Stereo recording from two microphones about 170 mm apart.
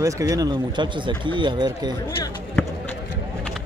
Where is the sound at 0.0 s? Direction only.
20° right (ahead or behind).